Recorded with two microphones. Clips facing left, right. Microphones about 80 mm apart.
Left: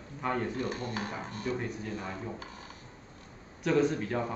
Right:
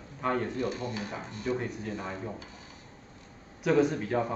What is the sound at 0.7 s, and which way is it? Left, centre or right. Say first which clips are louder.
Speech: even; left.